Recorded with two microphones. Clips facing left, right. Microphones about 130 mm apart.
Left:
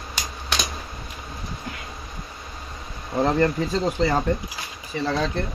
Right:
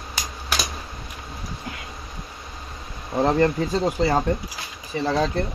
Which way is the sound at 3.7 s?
10° right (ahead or behind).